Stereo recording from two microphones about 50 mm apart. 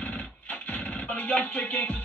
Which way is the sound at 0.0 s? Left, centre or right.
Left.